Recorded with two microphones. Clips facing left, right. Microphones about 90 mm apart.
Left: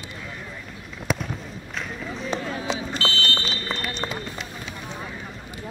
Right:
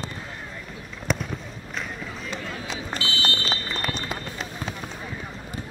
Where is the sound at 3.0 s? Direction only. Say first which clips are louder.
Even; 20° right (ahead or behind).